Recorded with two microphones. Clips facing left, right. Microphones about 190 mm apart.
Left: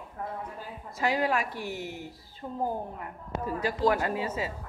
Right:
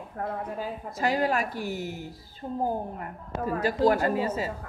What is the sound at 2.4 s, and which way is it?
Speech, 25° right (ahead or behind).